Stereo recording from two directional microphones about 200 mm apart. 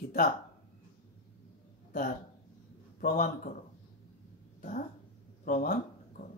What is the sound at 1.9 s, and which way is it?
A man's voice, 45° left (ahead or behind).